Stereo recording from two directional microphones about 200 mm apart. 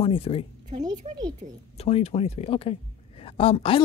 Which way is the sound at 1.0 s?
30° right (ahead or behind).